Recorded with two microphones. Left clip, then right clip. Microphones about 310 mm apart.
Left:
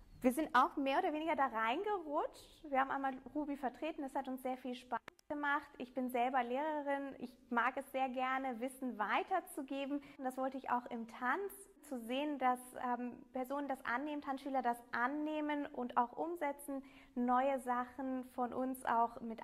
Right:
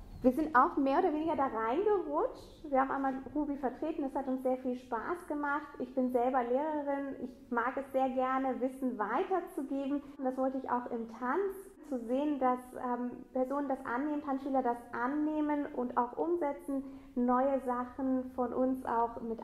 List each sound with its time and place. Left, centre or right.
0.2 s a woman's voice: left
1.3 s a woman's voice: left